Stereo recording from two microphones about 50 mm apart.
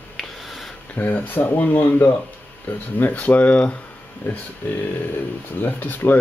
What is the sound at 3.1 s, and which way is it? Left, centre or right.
Speech, left.